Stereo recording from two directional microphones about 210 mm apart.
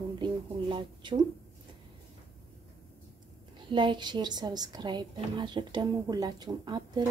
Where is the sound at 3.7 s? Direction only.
20° right (ahead or behind).